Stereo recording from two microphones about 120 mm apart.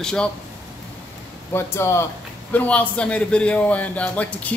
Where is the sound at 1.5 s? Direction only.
20° left (ahead or behind).